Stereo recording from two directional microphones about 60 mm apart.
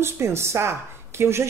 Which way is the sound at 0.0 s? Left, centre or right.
Right.